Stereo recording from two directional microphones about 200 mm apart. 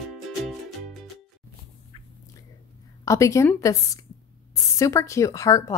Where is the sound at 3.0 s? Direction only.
15° left (ahead or behind).